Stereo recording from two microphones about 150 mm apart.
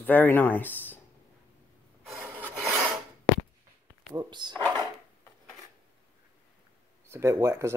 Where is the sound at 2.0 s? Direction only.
5° right (ahead or behind).